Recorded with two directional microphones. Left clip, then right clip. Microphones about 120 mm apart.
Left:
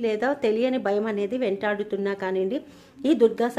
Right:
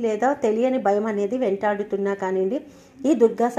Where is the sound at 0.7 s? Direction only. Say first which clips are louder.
Right 4 dB; 10° right (ahead or behind).